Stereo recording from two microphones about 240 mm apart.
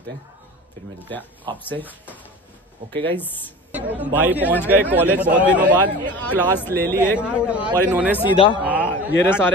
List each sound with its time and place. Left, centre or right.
1.6 s speech: centre
3.7 s speech: centre
5.6 s speech: right
6.0 s speech: centre
7.2 s a man's voice: centre
8.3 s speech: centre
8.6 s a sound: centre